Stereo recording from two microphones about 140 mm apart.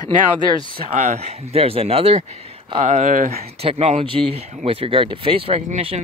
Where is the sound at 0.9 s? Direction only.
55° right (ahead or behind); by 3.4 s 80° right.